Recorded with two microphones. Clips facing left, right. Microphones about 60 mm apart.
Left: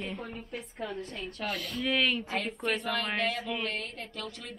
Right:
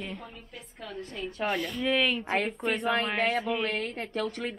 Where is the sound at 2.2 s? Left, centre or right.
Right.